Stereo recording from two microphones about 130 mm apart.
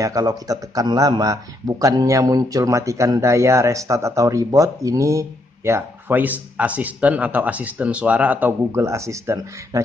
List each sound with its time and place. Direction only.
0.0 s speech: 25° right (ahead or behind)